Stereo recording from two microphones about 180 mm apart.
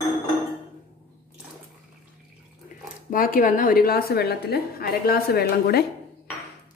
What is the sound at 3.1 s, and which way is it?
A woman's voice, 50° left (ahead or behind).